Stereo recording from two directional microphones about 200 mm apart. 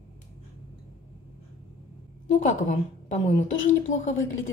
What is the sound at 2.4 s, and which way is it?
A woman's voice, 35° left (ahead or behind).